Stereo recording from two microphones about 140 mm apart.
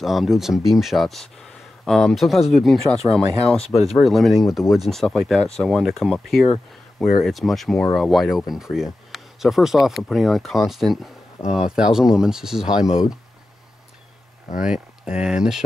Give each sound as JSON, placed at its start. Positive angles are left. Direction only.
{"t": 0.0, "sound": "speech", "side_deg": 0}
{"t": 11.4, "sound": "speech", "side_deg": 25}
{"t": 11.7, "sound": "speech", "side_deg": -5}
{"t": 14.6, "sound": "speech", "side_deg": -5}